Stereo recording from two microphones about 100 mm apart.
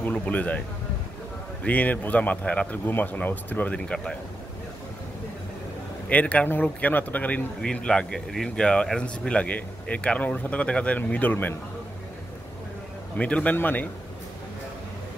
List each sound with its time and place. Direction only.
0.0 s speech: 15° left (ahead or behind)
1.6 s speech: 15° left (ahead or behind)
6.0 s speech: 15° left (ahead or behind)
13.2 s speech: 10° left (ahead or behind)